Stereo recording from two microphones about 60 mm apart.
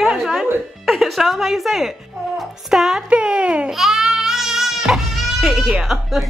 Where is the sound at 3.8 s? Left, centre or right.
Centre.